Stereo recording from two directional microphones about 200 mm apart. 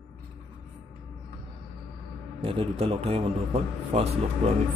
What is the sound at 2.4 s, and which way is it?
A man's voice, 30° right (ahead or behind).